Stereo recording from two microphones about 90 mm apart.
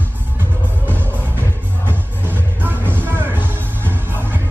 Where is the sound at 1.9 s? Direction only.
25° right (ahead or behind).